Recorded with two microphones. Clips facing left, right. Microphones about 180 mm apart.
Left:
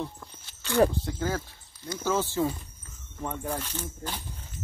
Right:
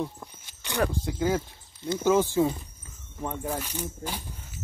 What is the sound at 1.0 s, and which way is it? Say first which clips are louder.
Speech: right 4 dB; 15° right (ahead or behind).